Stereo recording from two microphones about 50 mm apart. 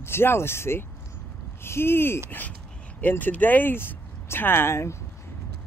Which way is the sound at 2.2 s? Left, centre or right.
Left.